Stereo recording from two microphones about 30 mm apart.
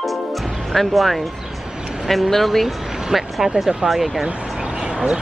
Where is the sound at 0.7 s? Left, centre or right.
Centre.